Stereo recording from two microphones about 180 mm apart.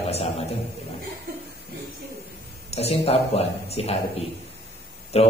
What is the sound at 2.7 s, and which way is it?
A man's voice, 35° left (ahead or behind).